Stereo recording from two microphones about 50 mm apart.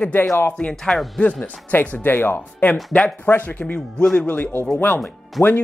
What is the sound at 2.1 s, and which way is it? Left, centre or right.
Speech, left.